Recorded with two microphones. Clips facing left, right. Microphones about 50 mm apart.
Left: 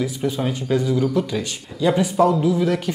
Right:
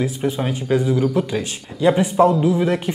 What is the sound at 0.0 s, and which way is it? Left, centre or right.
Speech, centre.